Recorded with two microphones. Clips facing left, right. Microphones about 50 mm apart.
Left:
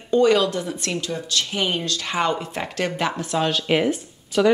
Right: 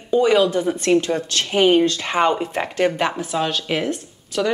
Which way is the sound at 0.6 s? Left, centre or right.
Right.